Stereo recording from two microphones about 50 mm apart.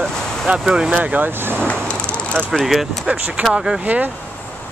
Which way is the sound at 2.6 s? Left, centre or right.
Centre.